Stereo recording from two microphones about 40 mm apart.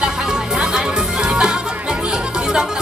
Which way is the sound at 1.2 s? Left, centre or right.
Right.